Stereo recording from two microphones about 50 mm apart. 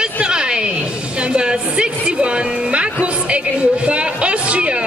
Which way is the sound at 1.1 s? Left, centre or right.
Right.